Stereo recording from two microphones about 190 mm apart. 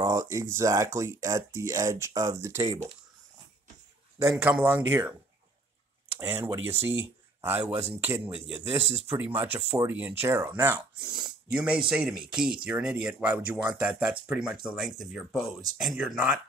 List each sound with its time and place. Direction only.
0.0 s speech: 15° right (ahead or behind)
4.3 s speech: 5° right (ahead or behind)
6.1 s speech: 15° right (ahead or behind)